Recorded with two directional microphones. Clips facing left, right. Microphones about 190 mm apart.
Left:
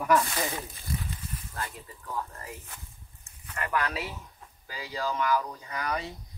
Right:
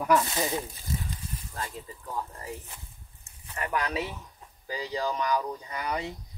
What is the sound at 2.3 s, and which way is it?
Speech, 15° right (ahead or behind).